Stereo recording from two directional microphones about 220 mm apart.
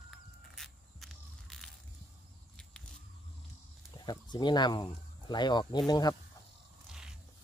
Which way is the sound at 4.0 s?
20° left (ahead or behind).